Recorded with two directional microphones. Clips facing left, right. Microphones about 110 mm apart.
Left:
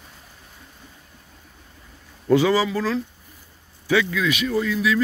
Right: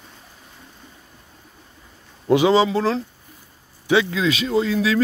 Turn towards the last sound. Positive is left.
turn(degrees=-30)  # may be behind; listen again after turning